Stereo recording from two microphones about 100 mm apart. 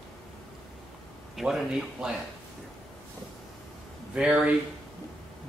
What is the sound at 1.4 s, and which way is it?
Speech, 5° right (ahead or behind).